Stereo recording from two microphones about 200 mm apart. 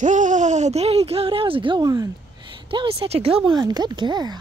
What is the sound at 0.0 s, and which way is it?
Speech, 40° right (ahead or behind).